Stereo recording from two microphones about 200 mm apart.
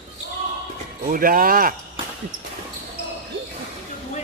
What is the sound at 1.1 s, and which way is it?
Speech, 45° right (ahead or behind).